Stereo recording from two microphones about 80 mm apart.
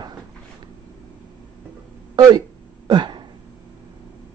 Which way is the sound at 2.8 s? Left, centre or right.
Right.